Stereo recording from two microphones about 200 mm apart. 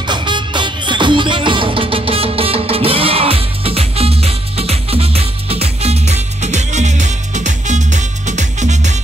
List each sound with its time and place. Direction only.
0.0 s music: 20° right (ahead or behind)